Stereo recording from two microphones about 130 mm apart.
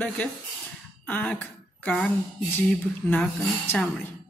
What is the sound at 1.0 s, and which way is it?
Speech, 10° left (ahead or behind).